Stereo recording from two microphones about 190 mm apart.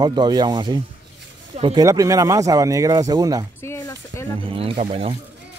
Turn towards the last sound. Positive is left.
turn(degrees=-35)  # may be behind; listen again after turning